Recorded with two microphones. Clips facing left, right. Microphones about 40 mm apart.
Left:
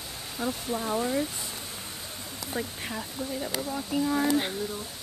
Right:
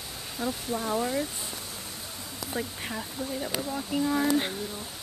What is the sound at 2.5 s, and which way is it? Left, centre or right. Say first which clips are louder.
Speech: even; centre.